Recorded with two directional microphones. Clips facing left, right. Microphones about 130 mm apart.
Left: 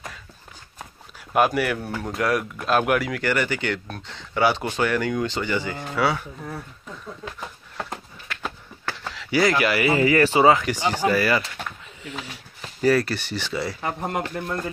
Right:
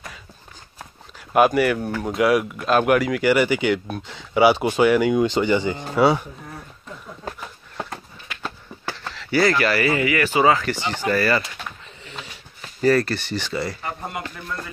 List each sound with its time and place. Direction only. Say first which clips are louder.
1.3 s speech: right 4 dB; centre (ahead or behind); by 6.2 s 20° right (ahead or behind)
9.0 s speech: right 1 dB; 5° left (ahead or behind)
9.9 s speech: left 2 dB; 35° left (ahead or behind)
10.5 s speech: left 1 dB; 10° left (ahead or behind)
13.7 s speech: left 4 dB; 70° left (ahead or behind); by 14.6 s 55° left (ahead or behind)